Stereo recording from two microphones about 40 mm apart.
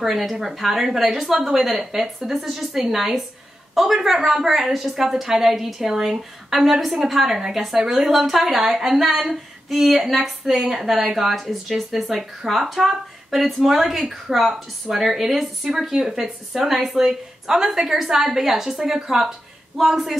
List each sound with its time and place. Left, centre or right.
0.0 s speech: centre